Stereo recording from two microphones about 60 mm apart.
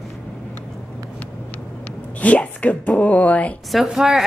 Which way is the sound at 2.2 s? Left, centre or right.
Left.